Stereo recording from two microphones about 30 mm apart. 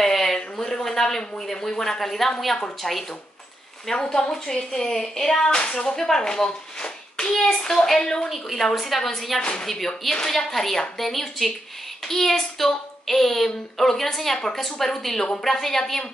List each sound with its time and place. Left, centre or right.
0.0 s a sound: centre
2.8 s a woman's voice: centre
4.1 s a woman's voice: centre
6.2 s hands: left
7.4 s a woman's voice: centre
8.5 s a woman's voice: centre
9.4 s a woman's voice: left
9.7 s a woman's voice: centre